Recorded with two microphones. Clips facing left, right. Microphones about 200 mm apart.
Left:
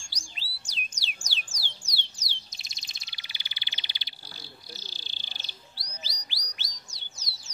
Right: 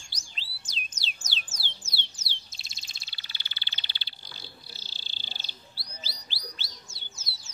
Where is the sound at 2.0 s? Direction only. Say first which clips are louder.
Right 1 dB; 15° left (ahead or behind).